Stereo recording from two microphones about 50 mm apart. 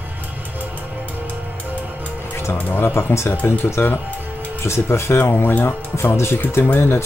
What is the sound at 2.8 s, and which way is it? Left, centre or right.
Speech, left.